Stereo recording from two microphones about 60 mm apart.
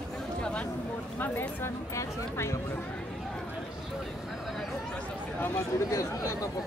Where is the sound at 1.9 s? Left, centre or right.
Left.